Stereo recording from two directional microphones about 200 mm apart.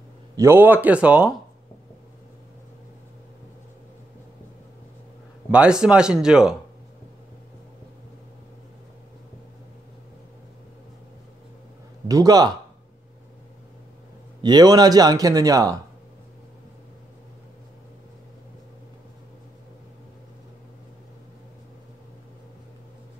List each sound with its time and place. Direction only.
0.4 s speech: 10° right (ahead or behind)
5.5 s speech: 5° right (ahead or behind)
12.1 s speech: 20° right (ahead or behind)
14.4 s speech: 20° right (ahead or behind)